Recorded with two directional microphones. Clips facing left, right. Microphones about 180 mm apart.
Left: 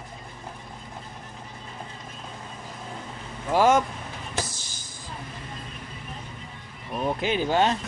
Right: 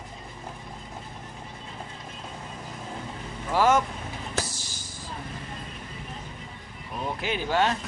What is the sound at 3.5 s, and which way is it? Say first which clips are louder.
Speech: left 2 dB; 15° left (ahead or behind).